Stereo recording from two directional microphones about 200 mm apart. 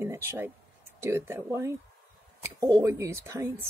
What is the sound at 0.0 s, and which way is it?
A woman's voice, 10° right (ahead or behind).